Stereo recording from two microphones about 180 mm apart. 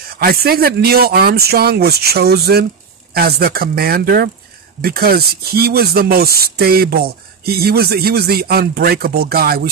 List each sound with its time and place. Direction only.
0.2 s speech: 55° right (ahead or behind)